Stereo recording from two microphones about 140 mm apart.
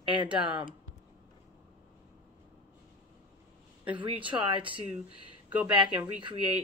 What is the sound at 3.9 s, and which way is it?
Speech, 35° right (ahead or behind).